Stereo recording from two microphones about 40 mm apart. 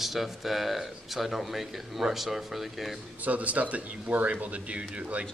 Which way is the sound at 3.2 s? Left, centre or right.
Right.